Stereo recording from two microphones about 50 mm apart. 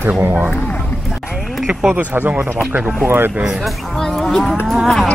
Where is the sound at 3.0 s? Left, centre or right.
Right.